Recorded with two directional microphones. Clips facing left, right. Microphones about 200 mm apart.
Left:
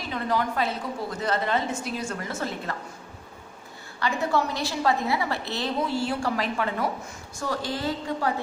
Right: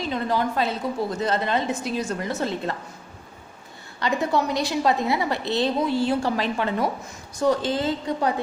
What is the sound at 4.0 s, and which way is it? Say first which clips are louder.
A woman's voice: right 2 dB; 20° right (ahead or behind).